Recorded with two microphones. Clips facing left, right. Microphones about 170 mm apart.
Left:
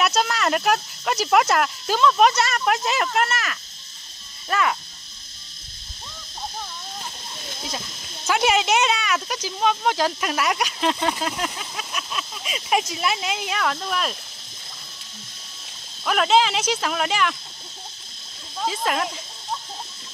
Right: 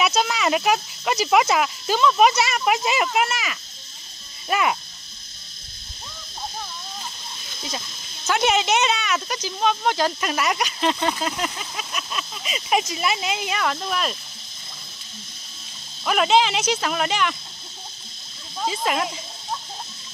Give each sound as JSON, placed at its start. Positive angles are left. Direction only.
{"t": 0.0, "sound": "speech", "side_deg": 0}
{"t": 4.5, "sound": "speech", "side_deg": -15}
{"t": 8.3, "sound": "speech", "side_deg": 0}
{"t": 16.1, "sound": "speech", "side_deg": 0}
{"t": 18.6, "sound": "speech", "side_deg": 0}